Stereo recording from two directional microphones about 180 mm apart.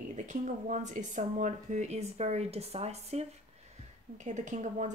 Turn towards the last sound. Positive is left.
turn(degrees=-40)  # may be behind; listen again after turning